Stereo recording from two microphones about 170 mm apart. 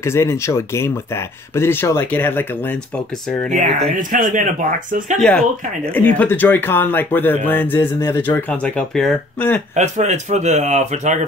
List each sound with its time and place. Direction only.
0.0 s speech: 15° left (ahead or behind)
3.5 s speech: 50° right (ahead or behind)
5.9 s speech: 10° left (ahead or behind)
9.8 s speech: 45° right (ahead or behind)